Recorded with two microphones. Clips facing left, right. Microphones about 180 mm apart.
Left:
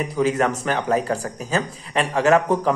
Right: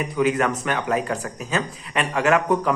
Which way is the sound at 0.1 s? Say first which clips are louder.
Even; 30° left (ahead or behind).